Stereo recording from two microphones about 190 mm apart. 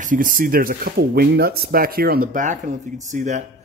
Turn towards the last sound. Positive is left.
turn(degrees=-40)  # may be behind; listen again after turning